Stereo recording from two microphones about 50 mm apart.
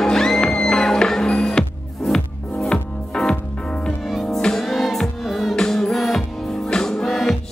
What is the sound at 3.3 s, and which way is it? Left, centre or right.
Music, centre.